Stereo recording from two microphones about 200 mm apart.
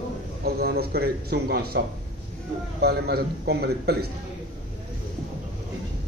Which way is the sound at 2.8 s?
50° right (ahead or behind).